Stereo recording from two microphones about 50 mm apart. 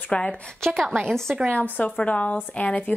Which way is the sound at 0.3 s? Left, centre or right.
Centre.